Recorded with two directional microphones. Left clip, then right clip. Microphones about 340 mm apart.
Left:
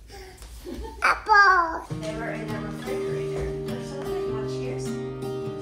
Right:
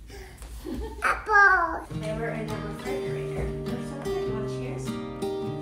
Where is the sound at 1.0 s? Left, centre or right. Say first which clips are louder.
Left 3 dB; left.